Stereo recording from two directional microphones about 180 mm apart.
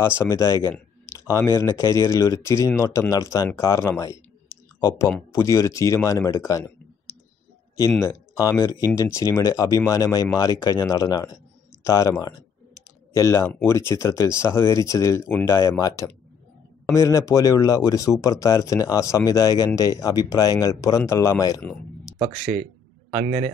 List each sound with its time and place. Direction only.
0.0 s speech: 15° left (ahead or behind)
8.0 s speech: 20° left (ahead or behind)
22.2 s speech: 45° right (ahead or behind)